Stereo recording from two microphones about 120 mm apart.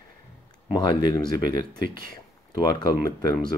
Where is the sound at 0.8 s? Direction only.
35° left (ahead or behind).